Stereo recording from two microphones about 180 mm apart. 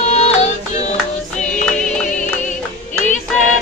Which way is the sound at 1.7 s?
5° left (ahead or behind).